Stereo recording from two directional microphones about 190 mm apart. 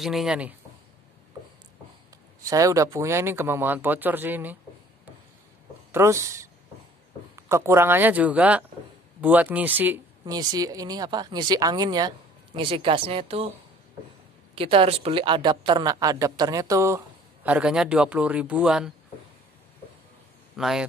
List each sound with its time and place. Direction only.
0.0 s speech: centre (ahead or behind)
2.5 s a woman's voice: 15° right (ahead or behind)
5.9 s a woman's voice: 15° right (ahead or behind); by 13.5 s 30° right (ahead or behind)
14.5 s a woman's voice: 30° right (ahead or behind); by 18.9 s 5° right (ahead or behind)
20.5 s a man's voice: 5° right (ahead or behind)